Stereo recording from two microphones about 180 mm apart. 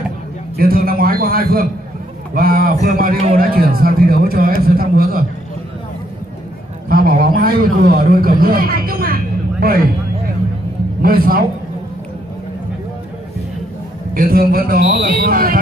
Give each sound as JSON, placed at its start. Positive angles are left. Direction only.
{"t": 0.6, "sound": "a man's voice", "side_deg": -55}
{"t": 6.9, "sound": "a man's voice", "side_deg": -55}
{"t": 11.0, "sound": "a man's voice", "side_deg": -55}
{"t": 14.1, "sound": "a man's voice", "side_deg": -55}